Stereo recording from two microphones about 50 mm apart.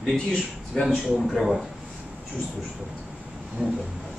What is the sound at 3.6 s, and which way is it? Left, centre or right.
Speech, right.